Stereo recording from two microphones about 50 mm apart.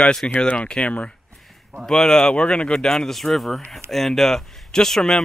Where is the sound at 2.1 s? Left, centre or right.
Left.